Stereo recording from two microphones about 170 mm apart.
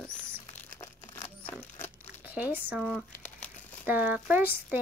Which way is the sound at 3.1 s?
10° left (ahead or behind).